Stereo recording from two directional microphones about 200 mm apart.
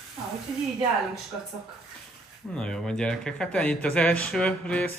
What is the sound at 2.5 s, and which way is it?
Speech, 5° left (ahead or behind).